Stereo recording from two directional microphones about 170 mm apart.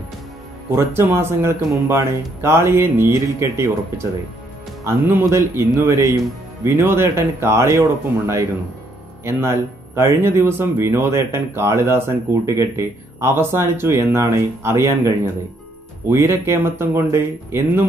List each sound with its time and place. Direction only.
0.7 s speech: 15° right (ahead or behind)
4.8 s speech: 15° right (ahead or behind)